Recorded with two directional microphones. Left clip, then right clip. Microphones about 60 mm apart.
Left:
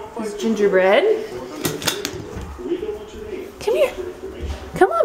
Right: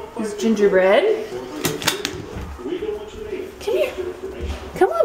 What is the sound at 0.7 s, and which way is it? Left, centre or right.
Speech, centre.